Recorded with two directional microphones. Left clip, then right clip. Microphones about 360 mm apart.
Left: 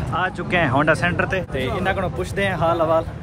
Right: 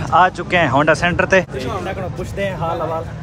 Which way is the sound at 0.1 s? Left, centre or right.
Centre.